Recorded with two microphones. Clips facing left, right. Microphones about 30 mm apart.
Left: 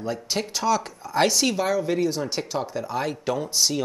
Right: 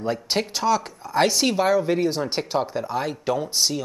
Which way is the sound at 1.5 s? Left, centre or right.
Centre.